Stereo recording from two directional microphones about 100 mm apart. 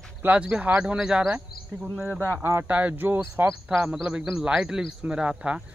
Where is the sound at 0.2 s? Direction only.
15° right (ahead or behind).